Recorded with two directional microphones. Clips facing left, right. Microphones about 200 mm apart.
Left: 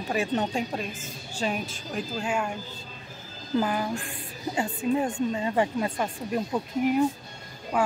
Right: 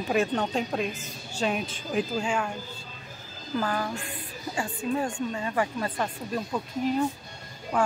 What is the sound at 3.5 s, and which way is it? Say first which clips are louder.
A woman's voice: left 3 dB; 15° left (ahead or behind).